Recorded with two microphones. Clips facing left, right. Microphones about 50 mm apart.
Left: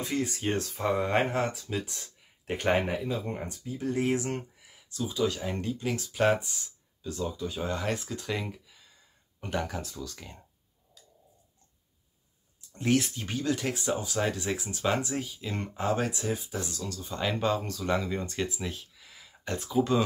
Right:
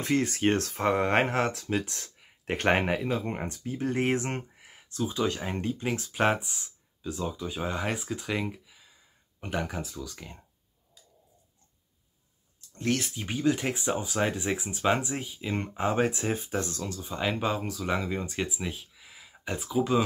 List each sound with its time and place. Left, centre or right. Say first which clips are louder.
0.0 s speech: right 5 dB; right; by 10.4 s centre
12.5 s a sound: left 3 dB; centre
13.1 s speech: right 3 dB; centre; by 16.8 s right
17.0 s speech: even; centre